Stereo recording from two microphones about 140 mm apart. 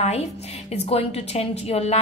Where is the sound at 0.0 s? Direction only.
50° left (ahead or behind).